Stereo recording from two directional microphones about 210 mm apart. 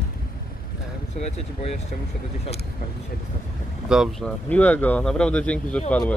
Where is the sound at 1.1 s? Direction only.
30° left (ahead or behind).